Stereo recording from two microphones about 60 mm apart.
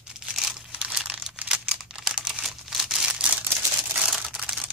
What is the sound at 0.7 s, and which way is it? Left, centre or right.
Crumpling, centre.